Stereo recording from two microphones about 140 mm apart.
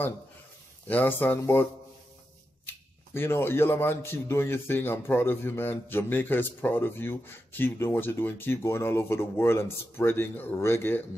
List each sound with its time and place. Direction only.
0.8 s speech: 15° left (ahead or behind)
3.2 s speech: 15° left (ahead or behind)